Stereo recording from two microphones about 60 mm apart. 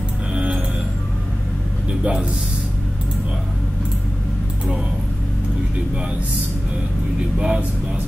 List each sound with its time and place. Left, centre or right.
0.3 s music: centre
1.9 s a sound: centre
7.3 s speech: centre